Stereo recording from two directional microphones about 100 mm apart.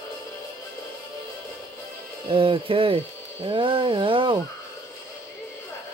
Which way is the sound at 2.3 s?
65° right (ahead or behind).